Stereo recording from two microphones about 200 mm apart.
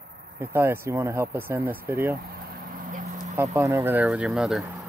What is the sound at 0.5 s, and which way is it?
Speech, 10° right (ahead or behind).